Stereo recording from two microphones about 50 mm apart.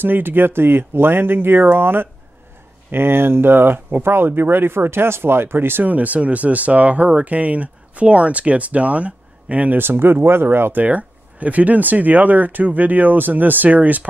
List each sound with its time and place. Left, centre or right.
0.0 s speech: right
9.8 s speech: right
10.8 s speech: right